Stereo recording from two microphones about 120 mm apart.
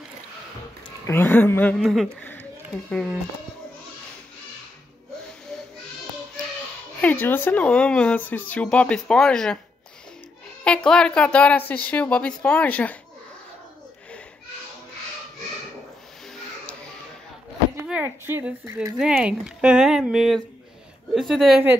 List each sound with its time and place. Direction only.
1.0 s speech: 15° left (ahead or behind)
1.8 s speech: centre (ahead or behind)
7.0 s speech: 15° left (ahead or behind)
10.6 s speech: 10° left (ahead or behind)
18.0 s speech: 20° right (ahead or behind)
18.9 s speech: 5° right (ahead or behind)